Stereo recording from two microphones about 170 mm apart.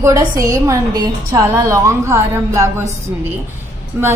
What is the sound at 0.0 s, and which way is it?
A woman's voice, 20° right (ahead or behind).